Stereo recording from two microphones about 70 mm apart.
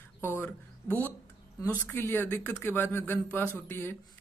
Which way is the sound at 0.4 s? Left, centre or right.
Left.